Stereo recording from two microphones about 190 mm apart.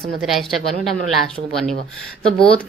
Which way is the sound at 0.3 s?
Centre (ahead or behind).